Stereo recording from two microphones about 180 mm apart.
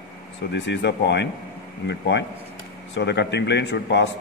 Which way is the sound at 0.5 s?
75° left (ahead or behind).